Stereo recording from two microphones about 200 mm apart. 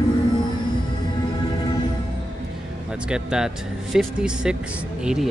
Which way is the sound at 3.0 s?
5° right (ahead or behind).